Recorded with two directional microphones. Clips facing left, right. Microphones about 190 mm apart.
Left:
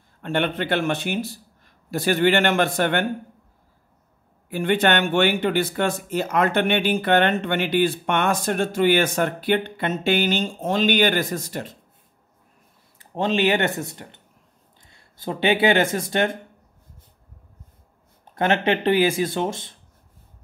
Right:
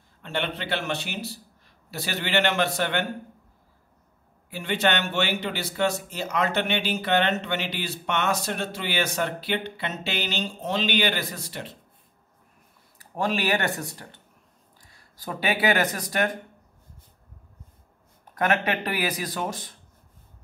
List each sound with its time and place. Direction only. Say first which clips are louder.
0.2 s speech: left 7 dB; 55° left (ahead or behind)
4.5 s speech: left 5 dB; 55° left (ahead or behind)
13.0 s speech: left 5 dB; 25° left (ahead or behind)
18.3 s speech: left 4 dB; 25° left (ahead or behind)